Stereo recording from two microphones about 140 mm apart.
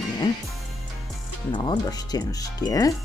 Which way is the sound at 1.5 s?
30° left (ahead or behind).